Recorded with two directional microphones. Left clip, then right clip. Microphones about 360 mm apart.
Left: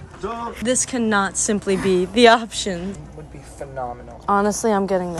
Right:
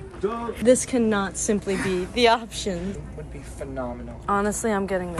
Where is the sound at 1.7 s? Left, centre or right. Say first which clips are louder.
Left 6 dB; left.